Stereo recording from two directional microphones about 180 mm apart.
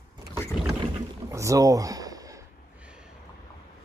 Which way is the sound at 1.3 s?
15° right (ahead or behind).